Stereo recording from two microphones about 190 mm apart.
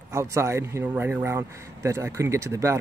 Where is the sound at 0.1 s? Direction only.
15° right (ahead or behind).